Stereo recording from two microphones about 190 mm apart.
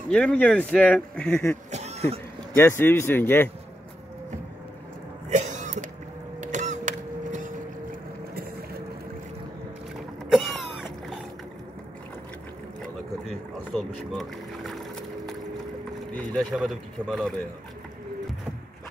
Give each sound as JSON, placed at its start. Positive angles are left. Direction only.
{"t": 0.1, "sound": "speech", "side_deg": 5}
{"t": 1.7, "sound": "cough", "side_deg": -35}
{"t": 2.5, "sound": "speech", "side_deg": 10}
{"t": 5.3, "sound": "cough", "side_deg": -40}
{"t": 6.4, "sound": "a sound", "side_deg": -40}
{"t": 10.3, "sound": "a sound", "side_deg": 0}
{"t": 14.1, "sound": "boat", "side_deg": 0}
{"t": 16.3, "sound": "speech", "side_deg": 0}